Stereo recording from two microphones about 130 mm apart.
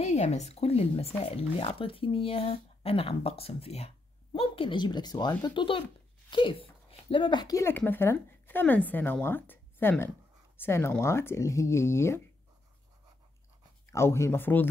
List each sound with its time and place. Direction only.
0.0 s speech: 60° left (ahead or behind); by 12.2 s 20° left (ahead or behind)
13.8 s speech: 20° left (ahead or behind)